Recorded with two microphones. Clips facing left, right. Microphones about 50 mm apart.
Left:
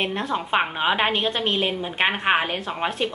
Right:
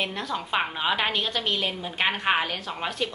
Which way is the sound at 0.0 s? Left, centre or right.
Left.